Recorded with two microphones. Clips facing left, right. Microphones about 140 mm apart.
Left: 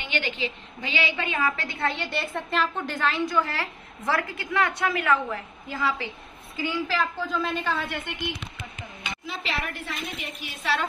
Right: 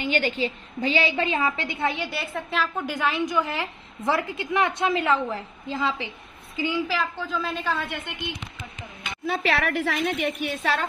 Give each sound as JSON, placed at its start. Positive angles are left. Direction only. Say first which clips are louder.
{"t": 0.0, "sound": "a woman's voice", "louder": "right 5 dB", "side_deg": -40}
{"t": 3.0, "sound": "a woman's voice", "louder": "even", "side_deg": -15}
{"t": 7.0, "sound": "a woman's voice", "louder": "left 1 dB", "side_deg": 0}
{"t": 9.2, "sound": "a woman's voice", "louder": "right 9 dB", "side_deg": -60}